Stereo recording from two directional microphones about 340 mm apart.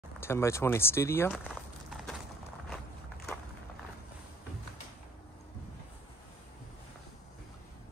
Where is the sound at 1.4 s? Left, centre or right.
Centre.